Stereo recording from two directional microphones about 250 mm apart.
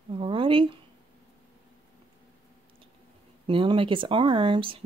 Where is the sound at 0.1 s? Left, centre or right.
Right.